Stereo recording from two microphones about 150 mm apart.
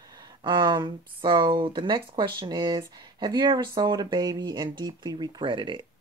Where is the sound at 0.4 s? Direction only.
30° right (ahead or behind).